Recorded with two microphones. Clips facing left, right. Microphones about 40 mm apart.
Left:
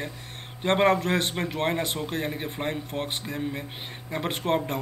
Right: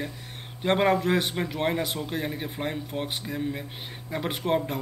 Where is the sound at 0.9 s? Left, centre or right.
Centre.